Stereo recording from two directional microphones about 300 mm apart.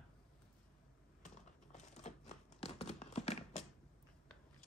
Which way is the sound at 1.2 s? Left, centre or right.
Left.